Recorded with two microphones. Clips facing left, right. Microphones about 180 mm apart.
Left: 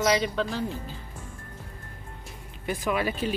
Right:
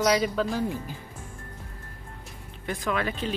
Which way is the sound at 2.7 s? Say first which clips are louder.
Left 1 dB; 10° left (ahead or behind).